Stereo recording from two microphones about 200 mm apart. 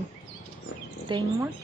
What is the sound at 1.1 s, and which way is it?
Speech, 25° right (ahead or behind).